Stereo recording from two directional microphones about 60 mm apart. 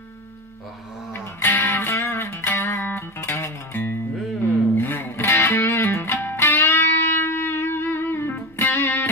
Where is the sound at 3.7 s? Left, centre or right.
Left.